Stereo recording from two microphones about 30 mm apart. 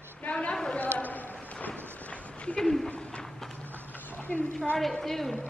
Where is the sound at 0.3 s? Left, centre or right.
Left.